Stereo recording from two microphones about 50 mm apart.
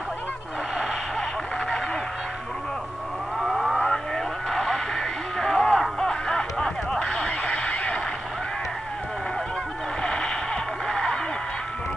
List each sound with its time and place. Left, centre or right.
3.4 s civil defense siren: centre
3.8 s a sound: centre; by 8.0 s left
10.0 s radio: centre